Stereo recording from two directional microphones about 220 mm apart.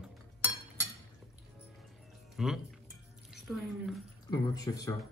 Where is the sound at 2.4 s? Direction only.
Centre (ahead or behind).